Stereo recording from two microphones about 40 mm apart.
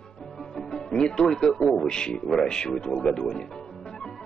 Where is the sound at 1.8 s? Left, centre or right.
Centre.